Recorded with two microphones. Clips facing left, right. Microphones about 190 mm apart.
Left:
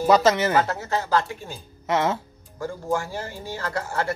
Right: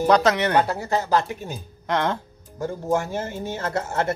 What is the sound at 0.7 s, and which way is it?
Speech, 15° right (ahead or behind).